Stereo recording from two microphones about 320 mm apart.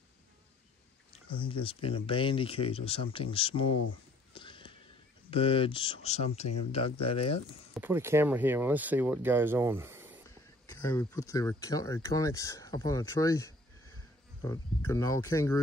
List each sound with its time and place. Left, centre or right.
1.4 s speech: centre
4.3 s a sound: centre
5.3 s speech: centre
7.7 s speech: centre
10.7 s speech: centre
14.9 s speech: centre